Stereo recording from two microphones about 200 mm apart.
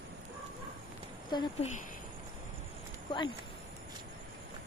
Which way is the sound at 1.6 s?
30° left (ahead or behind).